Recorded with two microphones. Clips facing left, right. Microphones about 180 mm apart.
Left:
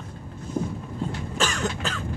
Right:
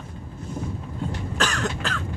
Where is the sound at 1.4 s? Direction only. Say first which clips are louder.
Even; 5° left (ahead or behind).